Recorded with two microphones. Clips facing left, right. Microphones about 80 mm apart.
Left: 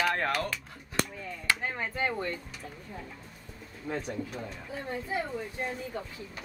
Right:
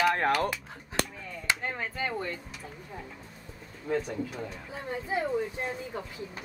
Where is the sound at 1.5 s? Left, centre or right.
Centre.